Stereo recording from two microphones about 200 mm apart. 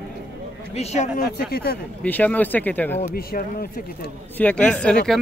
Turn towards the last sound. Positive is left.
turn(degrees=5)  # may be behind; listen again after turning